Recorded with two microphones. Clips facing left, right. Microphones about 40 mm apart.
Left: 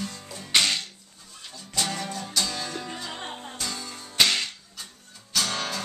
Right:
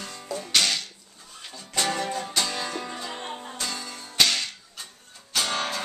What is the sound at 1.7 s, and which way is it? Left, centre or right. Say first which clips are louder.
Music: right 3 dB; right.